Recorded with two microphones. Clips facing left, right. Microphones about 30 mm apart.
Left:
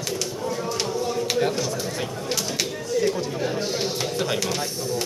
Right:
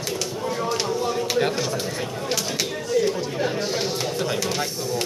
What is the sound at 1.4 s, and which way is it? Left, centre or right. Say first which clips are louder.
Speech: right 1 dB; right.